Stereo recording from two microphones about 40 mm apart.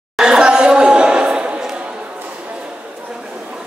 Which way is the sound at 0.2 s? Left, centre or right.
Centre.